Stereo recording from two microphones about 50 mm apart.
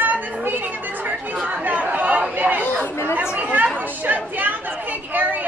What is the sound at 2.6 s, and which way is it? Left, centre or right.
Chatter, left.